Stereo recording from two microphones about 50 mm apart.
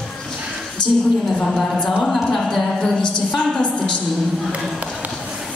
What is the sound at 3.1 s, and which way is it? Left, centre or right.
Speech, centre.